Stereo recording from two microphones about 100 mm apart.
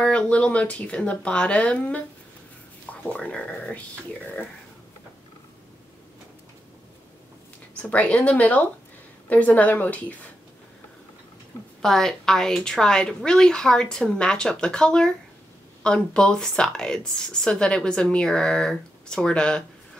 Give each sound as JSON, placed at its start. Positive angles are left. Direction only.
{"t": 0.0, "sound": "speech", "side_deg": 10}
{"t": 7.7, "sound": "speech", "side_deg": 15}
{"t": 11.8, "sound": "speech", "side_deg": 5}